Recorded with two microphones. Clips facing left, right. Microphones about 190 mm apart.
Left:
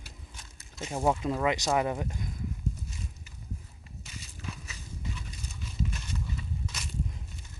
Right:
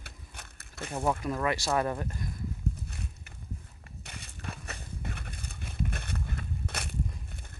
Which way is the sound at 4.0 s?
60° right (ahead or behind).